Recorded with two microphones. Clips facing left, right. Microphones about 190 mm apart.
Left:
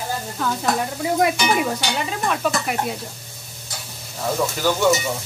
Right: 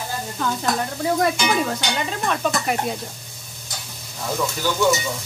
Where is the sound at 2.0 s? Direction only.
5° left (ahead or behind).